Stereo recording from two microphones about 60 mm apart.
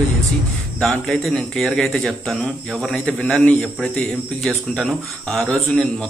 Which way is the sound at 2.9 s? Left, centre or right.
Centre.